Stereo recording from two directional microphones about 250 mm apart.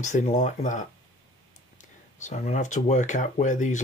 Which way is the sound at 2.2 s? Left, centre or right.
Left.